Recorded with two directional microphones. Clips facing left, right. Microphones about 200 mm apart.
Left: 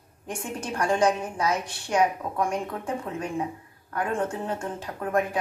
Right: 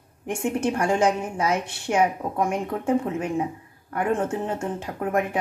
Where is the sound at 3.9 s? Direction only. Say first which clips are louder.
Right 4 dB; 25° right (ahead or behind).